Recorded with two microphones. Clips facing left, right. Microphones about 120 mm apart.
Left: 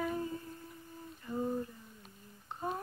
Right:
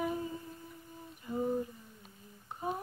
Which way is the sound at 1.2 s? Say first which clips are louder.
Right 2 dB; 15° right (ahead or behind).